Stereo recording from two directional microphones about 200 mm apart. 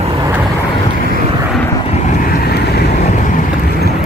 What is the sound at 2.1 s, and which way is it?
Vehicle, 45° left (ahead or behind).